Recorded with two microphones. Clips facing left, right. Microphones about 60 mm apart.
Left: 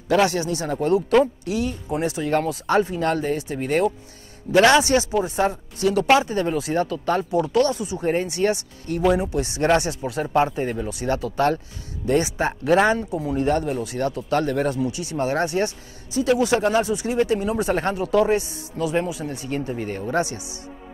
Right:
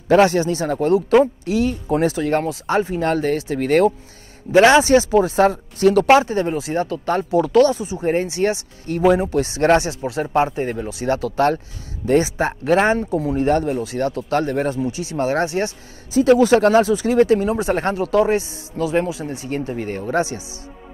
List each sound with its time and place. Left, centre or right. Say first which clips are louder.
0.1 s speech: right 5 dB; right
1.7 s speech: right 6 dB; right
2.1 s speech: right 2 dB; right
2.6 s speech: right 1 dB; right
3.2 s speech: right 4 dB; right
4.5 s a man's voice: right 4 dB; right
5.4 s a man's voice: right 6 dB; right
9.1 s a man's voice: right 4 dB; right
10.6 s speech: right 2 dB; right
12.2 s speech: right 3 dB; right
17.5 s speech: right 2 dB; right
18.1 s a man's voice: right 1 dB; right
19.7 s speech: right 2 dB; right
20.2 s a man's voice: right 3 dB; right